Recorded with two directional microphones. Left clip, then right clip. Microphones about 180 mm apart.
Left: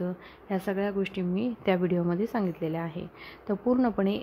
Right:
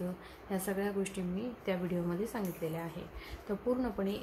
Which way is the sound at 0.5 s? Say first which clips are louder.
Left 6 dB; 40° left (ahead or behind).